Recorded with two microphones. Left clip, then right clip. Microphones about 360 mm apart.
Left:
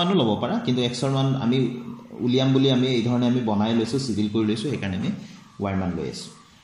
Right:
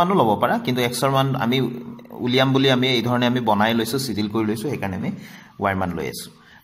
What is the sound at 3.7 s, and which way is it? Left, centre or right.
Speech, right.